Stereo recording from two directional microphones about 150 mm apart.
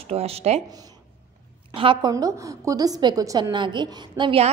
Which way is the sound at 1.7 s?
35° right (ahead or behind).